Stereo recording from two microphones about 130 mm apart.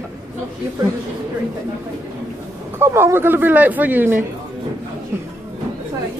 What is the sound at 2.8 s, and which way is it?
Speech, 20° right (ahead or behind).